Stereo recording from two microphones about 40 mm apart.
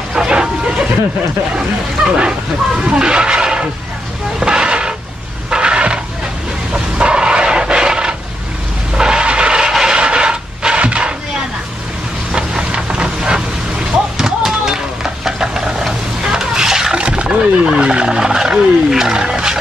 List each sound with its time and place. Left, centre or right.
0.1 s bow-wow: centre
2.1 s speech: right
4.4 s vehicle: right
5.5 s a sound: right
12.3 s vehicle: right
14.1 s a sound: centre
16.9 s wild animals: right